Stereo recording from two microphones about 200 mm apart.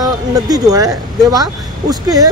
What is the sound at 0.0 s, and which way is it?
Speech, 20° right (ahead or behind).